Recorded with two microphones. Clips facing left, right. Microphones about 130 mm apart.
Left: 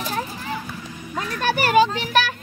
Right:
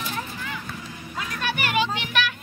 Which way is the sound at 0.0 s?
40° left (ahead or behind).